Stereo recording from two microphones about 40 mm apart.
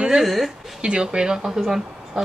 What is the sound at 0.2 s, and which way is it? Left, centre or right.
Speech, centre.